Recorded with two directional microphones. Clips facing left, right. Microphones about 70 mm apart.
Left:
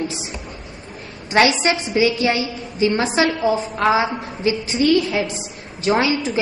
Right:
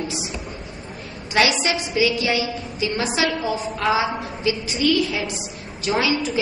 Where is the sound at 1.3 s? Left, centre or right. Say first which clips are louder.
Left 4 dB; left.